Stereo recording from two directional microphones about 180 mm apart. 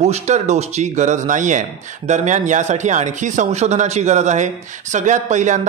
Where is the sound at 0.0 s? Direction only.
40° right (ahead or behind).